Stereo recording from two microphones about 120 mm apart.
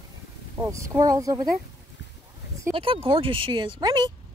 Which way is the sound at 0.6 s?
25° right (ahead or behind).